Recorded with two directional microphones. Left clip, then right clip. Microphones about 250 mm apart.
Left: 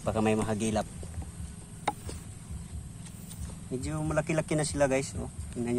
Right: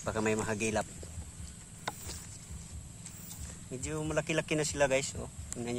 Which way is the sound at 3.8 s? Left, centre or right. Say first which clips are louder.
Left 2 dB; centre.